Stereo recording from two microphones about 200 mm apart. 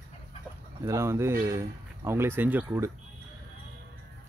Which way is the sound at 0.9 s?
15° right (ahead or behind).